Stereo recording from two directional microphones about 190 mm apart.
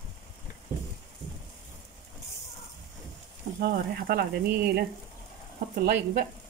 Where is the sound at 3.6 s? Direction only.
50° right (ahead or behind).